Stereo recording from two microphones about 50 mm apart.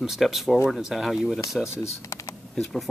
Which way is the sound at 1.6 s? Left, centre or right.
Centre.